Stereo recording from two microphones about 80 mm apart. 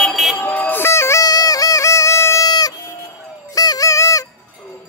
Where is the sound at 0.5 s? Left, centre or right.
Left.